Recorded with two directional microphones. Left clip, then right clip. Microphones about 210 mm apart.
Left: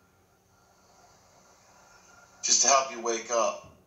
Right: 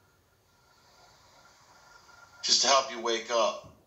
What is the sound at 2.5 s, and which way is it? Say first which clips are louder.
Speech: left 1 dB; 20° left (ahead or behind).